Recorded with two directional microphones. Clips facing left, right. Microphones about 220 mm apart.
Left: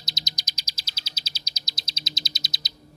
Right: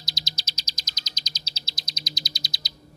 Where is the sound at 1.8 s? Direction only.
25° left (ahead or behind).